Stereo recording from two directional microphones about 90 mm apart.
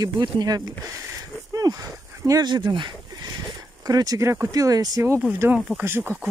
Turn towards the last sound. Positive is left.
turn(degrees=-25)  # may be behind; listen again after turning